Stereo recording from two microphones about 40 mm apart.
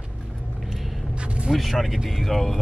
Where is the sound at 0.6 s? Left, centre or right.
Centre.